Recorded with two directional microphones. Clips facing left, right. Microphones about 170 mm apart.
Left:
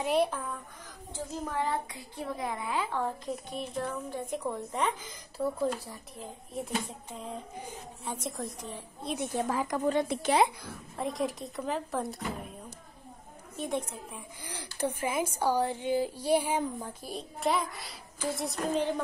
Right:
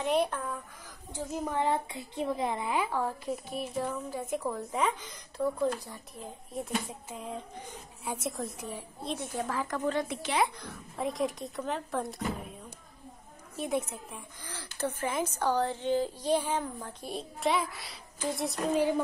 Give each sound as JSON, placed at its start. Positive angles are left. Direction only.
{"t": 0.0, "sound": "a woman's voice", "side_deg": 0}
{"t": 1.1, "sound": "a woman's voice", "side_deg": -15}
{"t": 2.9, "sound": "a woman's voice", "side_deg": -5}
{"t": 9.5, "sound": "a woman's voice", "side_deg": 15}
{"t": 10.6, "sound": "a woman's voice", "side_deg": 0}
{"t": 13.6, "sound": "a woman's voice", "side_deg": -5}
{"t": 14.4, "sound": "a woman's voice", "side_deg": 15}
{"t": 17.0, "sound": "a woman's voice", "side_deg": 0}